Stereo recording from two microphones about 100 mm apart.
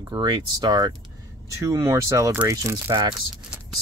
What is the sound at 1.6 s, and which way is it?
Speech, 30° right (ahead or behind).